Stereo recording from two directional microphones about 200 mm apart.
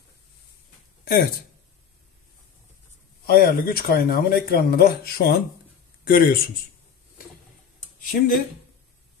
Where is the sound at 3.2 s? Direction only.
50° left (ahead or behind).